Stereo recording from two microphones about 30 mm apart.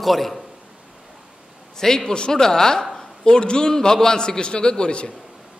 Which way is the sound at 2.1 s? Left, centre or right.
Left.